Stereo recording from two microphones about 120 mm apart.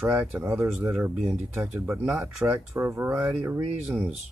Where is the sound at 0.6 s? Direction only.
15° right (ahead or behind).